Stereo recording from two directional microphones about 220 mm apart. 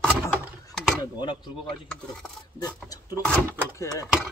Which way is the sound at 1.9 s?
5° left (ahead or behind).